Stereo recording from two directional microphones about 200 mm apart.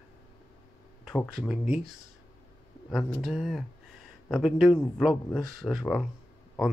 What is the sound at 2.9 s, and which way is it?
Speech, centre (ahead or behind).